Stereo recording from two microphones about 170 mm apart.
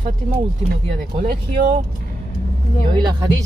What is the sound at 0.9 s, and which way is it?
Speech, 65° right (ahead or behind).